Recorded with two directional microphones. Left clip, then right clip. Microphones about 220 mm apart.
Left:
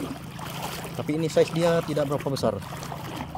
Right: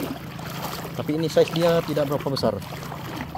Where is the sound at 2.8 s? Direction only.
5° left (ahead or behind).